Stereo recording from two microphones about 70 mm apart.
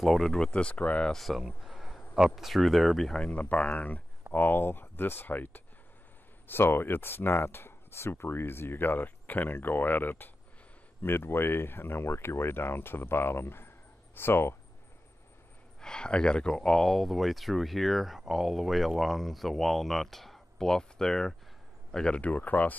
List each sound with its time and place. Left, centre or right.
0.0 s speech: centre
1.1 s a sound: centre
2.3 s speech: centre
3.2 s speech: left
15.8 s speech: centre